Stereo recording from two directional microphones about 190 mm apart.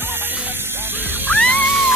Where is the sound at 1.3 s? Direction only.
10° left (ahead or behind).